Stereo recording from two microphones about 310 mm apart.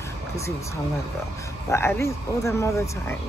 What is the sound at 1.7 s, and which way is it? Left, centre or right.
Speech, centre.